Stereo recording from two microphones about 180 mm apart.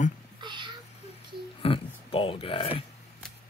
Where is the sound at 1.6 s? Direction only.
30° left (ahead or behind).